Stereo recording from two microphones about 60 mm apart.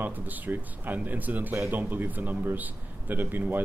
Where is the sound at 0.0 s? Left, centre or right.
Right.